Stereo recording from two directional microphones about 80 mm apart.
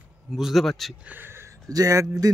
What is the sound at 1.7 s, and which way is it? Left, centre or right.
Speech, right.